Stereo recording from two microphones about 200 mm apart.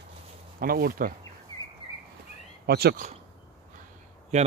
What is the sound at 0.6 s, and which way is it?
Speech, 45° right (ahead or behind).